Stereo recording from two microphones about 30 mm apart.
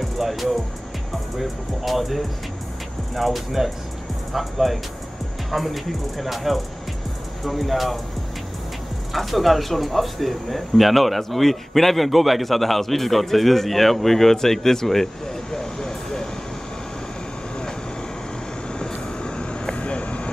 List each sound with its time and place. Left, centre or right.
0.0 s music: centre
1.4 s speech: centre
9.1 s speech: centre; by 16.3 s left
19.2 s vehicle: left
19.7 s vehicle: left